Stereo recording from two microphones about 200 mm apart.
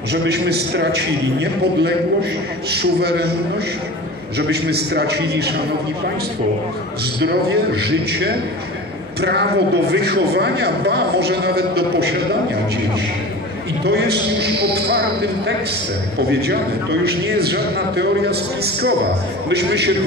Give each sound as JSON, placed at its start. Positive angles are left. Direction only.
{"t": 0.1, "sound": "a man's voice", "side_deg": -55}
{"t": 4.4, "sound": "a man's voice", "side_deg": -55}
{"t": 7.2, "sound": "a man's voice", "side_deg": -55}
{"t": 13.8, "sound": "a man's voice", "side_deg": -55}